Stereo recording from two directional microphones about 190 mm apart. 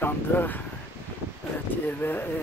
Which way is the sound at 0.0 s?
10° left (ahead or behind).